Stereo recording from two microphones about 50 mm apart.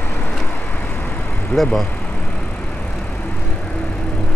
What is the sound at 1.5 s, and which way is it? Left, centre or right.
Speech, centre.